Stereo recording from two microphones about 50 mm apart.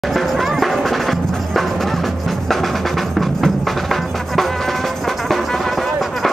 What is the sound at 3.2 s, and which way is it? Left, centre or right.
Music, centre.